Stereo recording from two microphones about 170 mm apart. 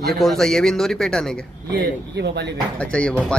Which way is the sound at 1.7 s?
85° right.